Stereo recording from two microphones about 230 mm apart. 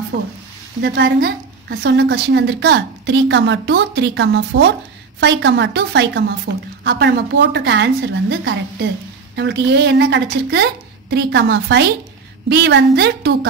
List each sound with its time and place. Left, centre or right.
0.1 s a woman's voice: right